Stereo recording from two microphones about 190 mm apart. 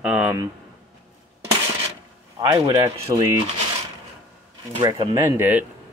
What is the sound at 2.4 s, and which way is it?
Speech, 15° right (ahead or behind).